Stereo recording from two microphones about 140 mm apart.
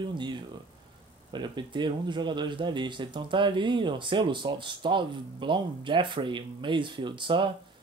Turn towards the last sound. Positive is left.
turn(degrees=-35)  # may be behind; listen again after turning